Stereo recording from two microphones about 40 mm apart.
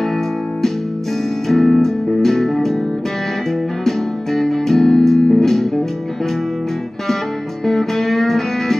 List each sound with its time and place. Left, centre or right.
1.5 s music: centre
3.8 s music: centre
7.6 s music: centre